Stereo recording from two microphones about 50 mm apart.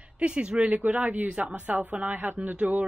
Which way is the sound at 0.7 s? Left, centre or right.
Right.